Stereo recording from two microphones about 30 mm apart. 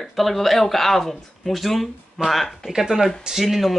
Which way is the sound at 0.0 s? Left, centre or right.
Centre.